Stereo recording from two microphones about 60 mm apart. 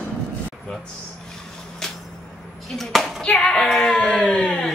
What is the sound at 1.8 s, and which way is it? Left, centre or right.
Vehicle, centre.